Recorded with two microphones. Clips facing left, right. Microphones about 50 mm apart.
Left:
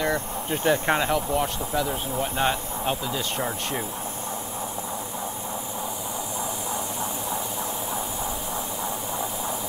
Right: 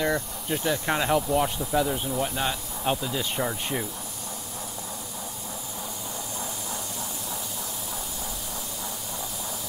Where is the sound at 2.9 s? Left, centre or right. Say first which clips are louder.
Right 1 dB; centre.